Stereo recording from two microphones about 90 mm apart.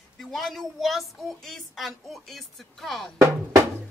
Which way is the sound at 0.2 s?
Centre (ahead or behind).